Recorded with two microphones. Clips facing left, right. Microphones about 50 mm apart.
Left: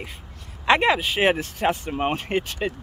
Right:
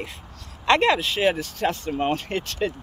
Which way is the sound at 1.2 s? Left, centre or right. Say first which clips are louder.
Left 1 dB; left.